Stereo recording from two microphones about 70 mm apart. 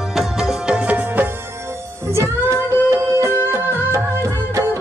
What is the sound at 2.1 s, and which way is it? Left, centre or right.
Music, right.